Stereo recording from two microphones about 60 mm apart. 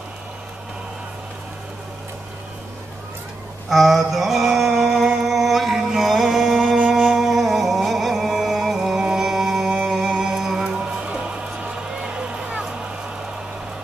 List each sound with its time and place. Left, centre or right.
3.6 s mantra: centre
6.9 s music: centre